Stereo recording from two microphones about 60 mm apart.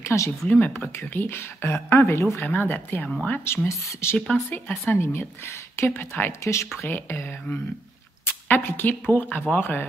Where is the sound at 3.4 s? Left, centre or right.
Left.